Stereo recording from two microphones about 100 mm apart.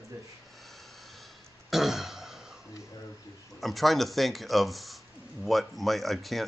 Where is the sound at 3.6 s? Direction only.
Centre (ahead or behind).